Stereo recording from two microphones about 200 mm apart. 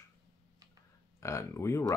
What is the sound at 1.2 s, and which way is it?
Speech, 15° left (ahead or behind).